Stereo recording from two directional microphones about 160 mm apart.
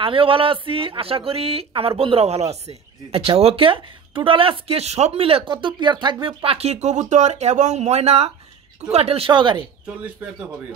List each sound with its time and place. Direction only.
0.0 s speech: 35° right (ahead or behind)